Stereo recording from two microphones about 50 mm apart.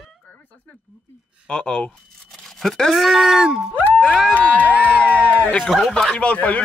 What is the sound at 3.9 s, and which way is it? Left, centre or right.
Speech, centre.